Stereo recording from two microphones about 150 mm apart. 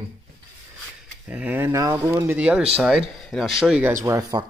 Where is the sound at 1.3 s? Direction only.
10° right (ahead or behind).